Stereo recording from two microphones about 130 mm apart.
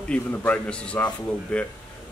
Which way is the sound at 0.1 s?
10° left (ahead or behind).